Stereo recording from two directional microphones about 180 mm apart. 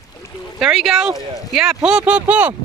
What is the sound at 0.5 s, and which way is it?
Speech, centre (ahead or behind).